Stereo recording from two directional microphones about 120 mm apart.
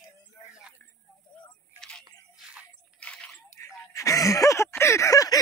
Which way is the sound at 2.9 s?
10° left (ahead or behind).